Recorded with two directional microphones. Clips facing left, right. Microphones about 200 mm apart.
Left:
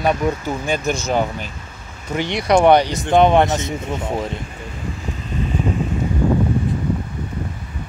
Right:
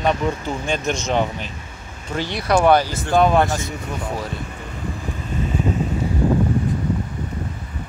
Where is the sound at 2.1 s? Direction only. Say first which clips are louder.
Left 3 dB; 20° left (ahead or behind).